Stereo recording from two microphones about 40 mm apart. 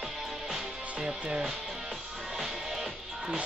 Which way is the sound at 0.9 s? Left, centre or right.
Right.